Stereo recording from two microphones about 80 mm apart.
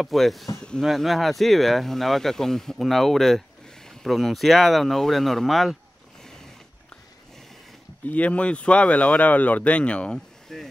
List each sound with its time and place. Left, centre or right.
0.0 s speech: centre
0.6 s speech: centre
0.8 s speech: centre
8.1 s speech: centre